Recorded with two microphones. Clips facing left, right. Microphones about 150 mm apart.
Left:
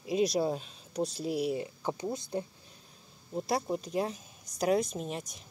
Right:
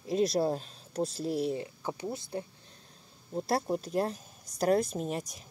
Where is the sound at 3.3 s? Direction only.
Centre (ahead or behind).